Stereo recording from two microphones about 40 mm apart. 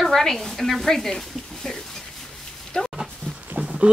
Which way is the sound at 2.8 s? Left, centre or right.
Left.